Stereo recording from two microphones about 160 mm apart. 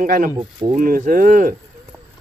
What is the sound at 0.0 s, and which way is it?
Speech, 60° right (ahead or behind).